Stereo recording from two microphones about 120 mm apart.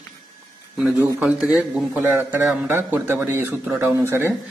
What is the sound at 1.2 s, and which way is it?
A man's voice, 10° right (ahead or behind).